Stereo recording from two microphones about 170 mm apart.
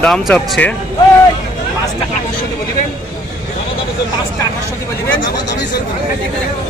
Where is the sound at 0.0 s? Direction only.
5° left (ahead or behind).